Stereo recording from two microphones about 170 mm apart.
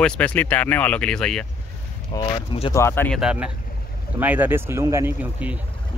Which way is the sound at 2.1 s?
25° left (ahead or behind).